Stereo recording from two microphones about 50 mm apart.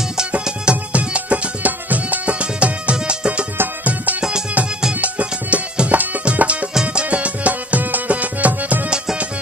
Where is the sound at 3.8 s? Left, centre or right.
Right.